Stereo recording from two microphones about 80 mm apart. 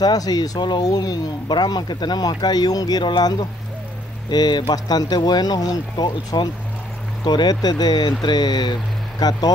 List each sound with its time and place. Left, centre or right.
0.0 s speech: left
3.0 s speech: left